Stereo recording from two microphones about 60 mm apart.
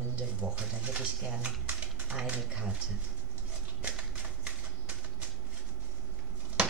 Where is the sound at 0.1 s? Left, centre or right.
Centre.